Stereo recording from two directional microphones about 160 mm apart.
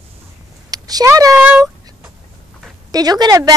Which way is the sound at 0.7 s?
25° right (ahead or behind).